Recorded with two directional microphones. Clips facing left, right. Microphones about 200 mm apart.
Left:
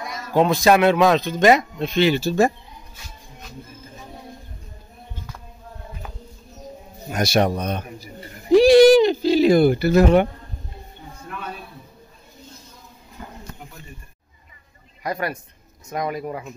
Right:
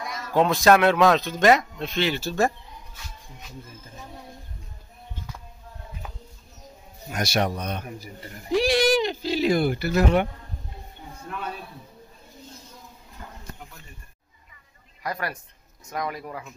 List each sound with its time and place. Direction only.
0.0 s speech: 5° left (ahead or behind)
7.1 s a man's voice: 30° left (ahead or behind)
8.5 s a sound: 35° left (ahead or behind)
15.0 s speech: 20° left (ahead or behind)